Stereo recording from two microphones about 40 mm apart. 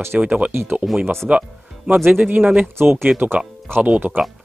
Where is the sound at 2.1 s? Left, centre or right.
Right.